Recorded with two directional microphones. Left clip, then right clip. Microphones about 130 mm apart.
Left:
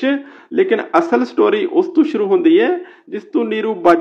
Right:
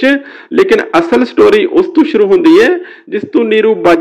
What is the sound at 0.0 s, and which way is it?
A man's voice, 25° right (ahead or behind).